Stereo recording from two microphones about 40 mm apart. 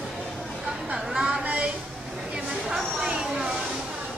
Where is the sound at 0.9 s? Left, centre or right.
Centre.